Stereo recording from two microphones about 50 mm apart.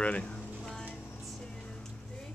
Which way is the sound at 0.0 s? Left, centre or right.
Left.